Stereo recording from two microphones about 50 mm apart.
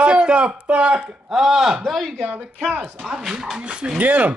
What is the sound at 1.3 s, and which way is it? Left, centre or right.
Speech, centre.